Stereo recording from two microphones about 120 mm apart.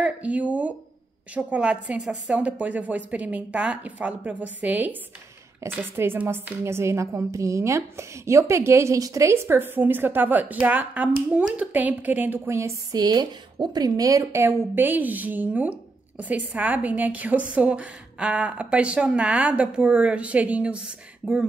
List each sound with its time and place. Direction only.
0.0 s a woman's voice: 10° right (ahead or behind)